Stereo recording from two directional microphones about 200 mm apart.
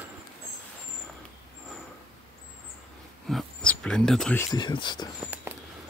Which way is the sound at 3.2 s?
5° left (ahead or behind).